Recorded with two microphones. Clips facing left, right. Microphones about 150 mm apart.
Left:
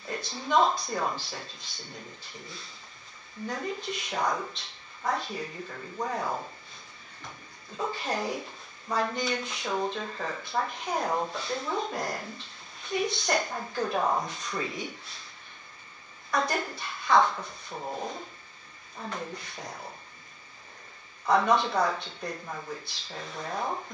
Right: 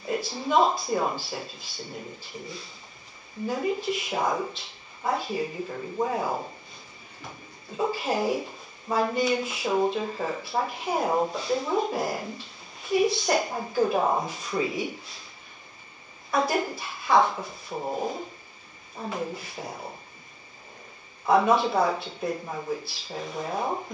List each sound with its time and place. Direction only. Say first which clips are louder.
0.0 s a sound: right 7 dB; 5° right (ahead or behind)
0.7 s speech: right 4 dB; 5° right (ahead or behind)
5.7 s speech: right 7 dB; 15° right (ahead or behind)
6.0 s speech: right 2 dB; 5° right (ahead or behind)
7.2 s a sound: right 4 dB; 20° right (ahead or behind)
7.9 s speech: right 5 dB; 5° right (ahead or behind)
16.3 s a woman's voice: right 4 dB; 5° right (ahead or behind)
19.7 s speech: right 4 dB; 20° right (ahead or behind)
21.3 s speech: right 3 dB; 5° right (ahead or behind)
22.3 s speech: right 7 dB; 20° right (ahead or behind); by 23.4 s 5° right (ahead or behind)